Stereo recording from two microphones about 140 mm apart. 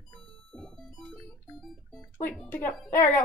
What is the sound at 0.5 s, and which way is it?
Music, 5° left (ahead or behind).